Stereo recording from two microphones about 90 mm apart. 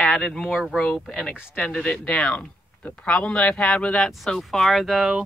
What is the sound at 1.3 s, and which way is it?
Speech, 20° left (ahead or behind).